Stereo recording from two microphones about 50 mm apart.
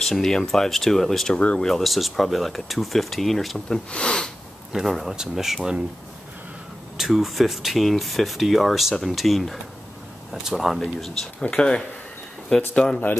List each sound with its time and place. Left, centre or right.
0.0 s speech: centre
1.3 s speech: left
1.6 s speech: centre
3.6 s speech: centre
4.7 s speech: centre
7.0 s speech: centre
11.5 s speech: centre